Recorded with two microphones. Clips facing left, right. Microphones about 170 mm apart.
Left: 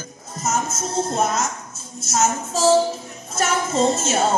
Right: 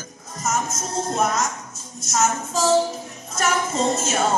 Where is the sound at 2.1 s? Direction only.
25° left (ahead or behind).